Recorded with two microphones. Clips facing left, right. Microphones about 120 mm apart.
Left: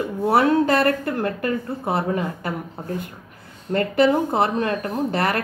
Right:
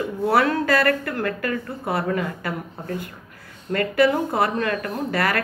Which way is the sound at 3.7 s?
25° left (ahead or behind).